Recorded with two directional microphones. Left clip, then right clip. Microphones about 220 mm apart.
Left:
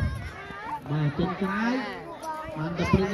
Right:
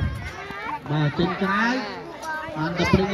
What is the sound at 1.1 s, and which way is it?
Speech, 45° right (ahead or behind).